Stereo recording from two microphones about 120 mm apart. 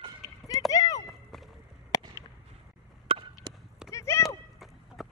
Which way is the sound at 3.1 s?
50° right (ahead or behind).